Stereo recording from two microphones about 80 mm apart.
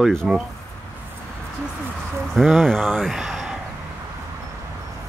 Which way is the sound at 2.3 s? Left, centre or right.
Centre.